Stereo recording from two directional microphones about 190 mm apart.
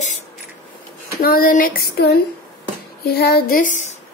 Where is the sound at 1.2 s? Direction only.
50° left (ahead or behind).